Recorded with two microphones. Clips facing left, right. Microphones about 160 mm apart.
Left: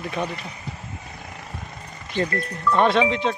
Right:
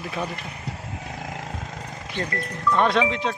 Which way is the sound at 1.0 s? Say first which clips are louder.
Right 5 dB; 85° right.